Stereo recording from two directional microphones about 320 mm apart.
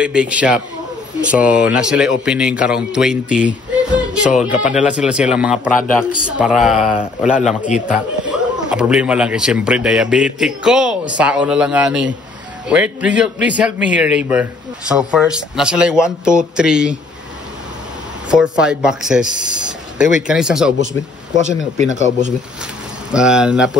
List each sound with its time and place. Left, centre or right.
0.0 s a man's voice: centre
18.3 s a man's voice: centre
21.8 s speech: left
23.1 s a man's voice: centre